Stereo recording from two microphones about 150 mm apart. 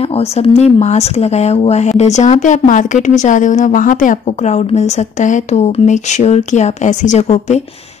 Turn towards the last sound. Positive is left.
turn(degrees=50)  # may be behind; listen again after turning